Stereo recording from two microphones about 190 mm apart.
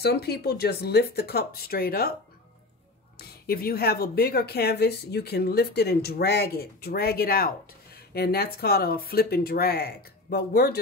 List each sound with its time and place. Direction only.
0.0 s speech: 55° left (ahead or behind)
3.2 s speech: 50° left (ahead or behind)